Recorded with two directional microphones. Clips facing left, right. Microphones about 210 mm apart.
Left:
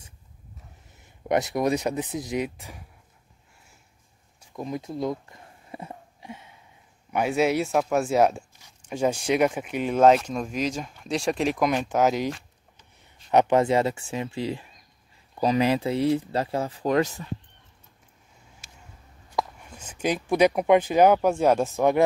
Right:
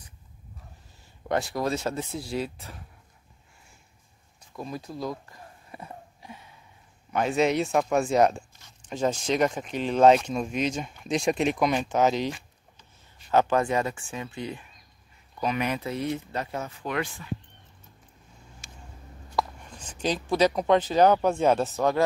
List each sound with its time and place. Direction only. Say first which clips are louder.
0.9 s speech: left 3 dB; 20° left (ahead or behind)
4.6 s speech: left 4 dB; 20° left (ahead or behind)
7.1 s speech: left 1 dB; 10° left (ahead or behind)
13.3 s speech: left 3 dB; 20° left (ahead or behind); by 17.3 s 40° left (ahead or behind)
19.3 s speech: even; 10° left (ahead or behind)